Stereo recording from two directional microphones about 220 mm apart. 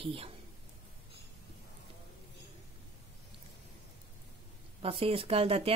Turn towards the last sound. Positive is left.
turn(degrees=-25)  # may be behind; listen again after turning